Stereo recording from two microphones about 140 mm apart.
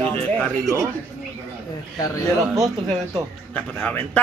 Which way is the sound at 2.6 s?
30° right (ahead or behind).